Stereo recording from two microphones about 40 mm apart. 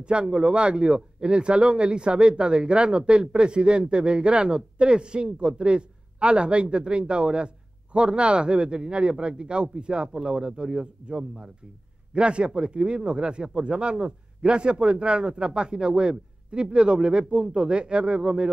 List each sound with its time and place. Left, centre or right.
0.0 s a man's voice: right